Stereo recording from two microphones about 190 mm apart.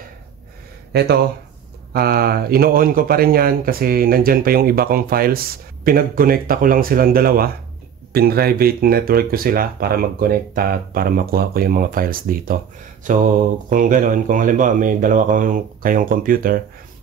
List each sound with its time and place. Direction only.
0.9 s speech: 60° right (ahead or behind)